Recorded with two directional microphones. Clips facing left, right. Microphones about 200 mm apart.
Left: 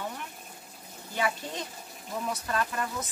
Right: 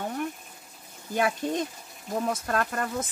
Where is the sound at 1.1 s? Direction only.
50° right (ahead or behind).